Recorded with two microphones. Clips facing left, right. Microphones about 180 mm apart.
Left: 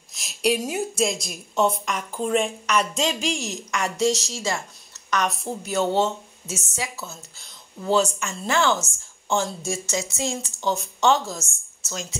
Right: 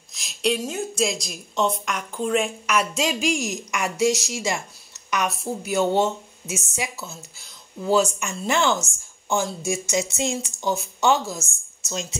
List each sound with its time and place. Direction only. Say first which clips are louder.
0.1 s a woman's voice: left 1 dB; 5° left (ahead or behind)
11.9 s speech: right 3 dB; 20° right (ahead or behind)